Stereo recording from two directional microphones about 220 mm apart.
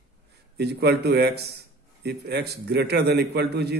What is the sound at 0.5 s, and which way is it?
A man's voice, 50° right (ahead or behind).